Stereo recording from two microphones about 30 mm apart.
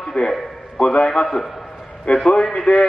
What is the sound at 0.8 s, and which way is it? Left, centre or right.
A man's voice, left.